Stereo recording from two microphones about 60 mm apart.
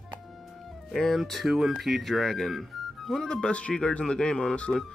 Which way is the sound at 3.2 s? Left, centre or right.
Centre.